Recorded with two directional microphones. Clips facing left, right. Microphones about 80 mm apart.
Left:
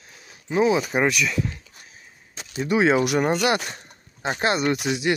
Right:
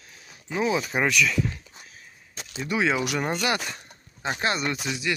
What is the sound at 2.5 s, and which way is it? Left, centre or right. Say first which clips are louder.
Speech: left 6 dB; left.